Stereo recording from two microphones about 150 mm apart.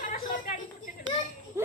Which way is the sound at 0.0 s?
65° left (ahead or behind).